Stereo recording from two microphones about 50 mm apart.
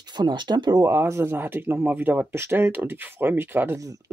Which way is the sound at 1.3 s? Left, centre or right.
Right.